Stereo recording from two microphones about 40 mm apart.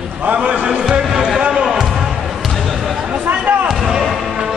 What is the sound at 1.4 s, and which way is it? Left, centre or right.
Basketball bounce, right.